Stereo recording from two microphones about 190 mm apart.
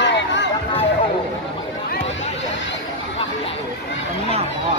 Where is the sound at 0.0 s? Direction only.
70° left (ahead or behind).